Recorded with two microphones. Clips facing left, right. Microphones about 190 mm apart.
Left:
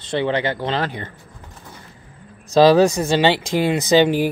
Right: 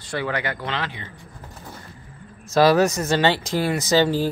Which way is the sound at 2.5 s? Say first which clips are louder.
Left 4 dB; 15° left (ahead or behind).